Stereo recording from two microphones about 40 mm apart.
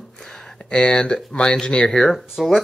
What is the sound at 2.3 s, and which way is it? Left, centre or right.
Speech, centre.